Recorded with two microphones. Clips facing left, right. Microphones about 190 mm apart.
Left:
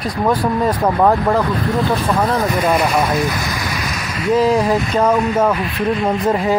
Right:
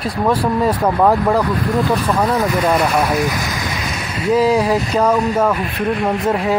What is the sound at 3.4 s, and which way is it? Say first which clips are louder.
Rain: even; 15° right (ahead or behind).